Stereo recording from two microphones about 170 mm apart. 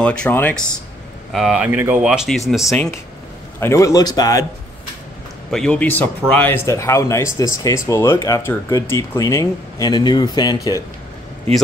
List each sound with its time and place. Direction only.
0.0 s a man's voice: 5° left (ahead or behind)
1.3 s speech: 5° right (ahead or behind)
3.5 s a man's voice: 15° left (ahead or behind)
5.5 s a man's voice: 5° left (ahead or behind); by 10.8 s 20° left (ahead or behind)